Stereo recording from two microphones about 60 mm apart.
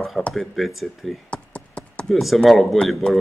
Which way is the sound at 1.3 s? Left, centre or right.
Centre.